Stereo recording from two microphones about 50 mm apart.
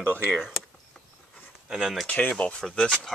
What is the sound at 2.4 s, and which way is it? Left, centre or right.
Speech, left.